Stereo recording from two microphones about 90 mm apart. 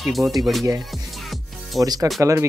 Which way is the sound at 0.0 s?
Centre (ahead or behind).